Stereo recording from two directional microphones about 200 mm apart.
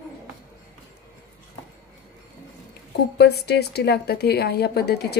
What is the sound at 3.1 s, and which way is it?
A woman's voice, 55° left (ahead or behind).